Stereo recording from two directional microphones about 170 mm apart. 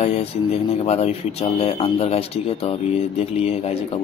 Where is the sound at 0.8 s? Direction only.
35° left (ahead or behind).